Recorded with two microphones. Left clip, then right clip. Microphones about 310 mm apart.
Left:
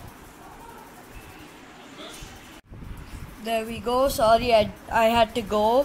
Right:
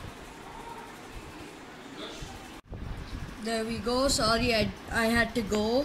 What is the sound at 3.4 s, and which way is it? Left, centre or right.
Speech, centre.